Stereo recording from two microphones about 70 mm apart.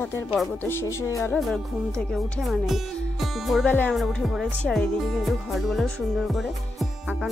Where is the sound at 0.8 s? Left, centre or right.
Left.